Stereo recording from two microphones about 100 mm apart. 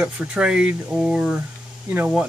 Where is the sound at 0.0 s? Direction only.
10° right (ahead or behind).